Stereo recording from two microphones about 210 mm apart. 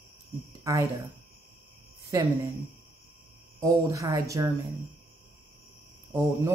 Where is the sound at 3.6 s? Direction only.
15° right (ahead or behind).